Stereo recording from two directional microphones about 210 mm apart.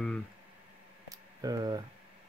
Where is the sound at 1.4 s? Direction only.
20° right (ahead or behind).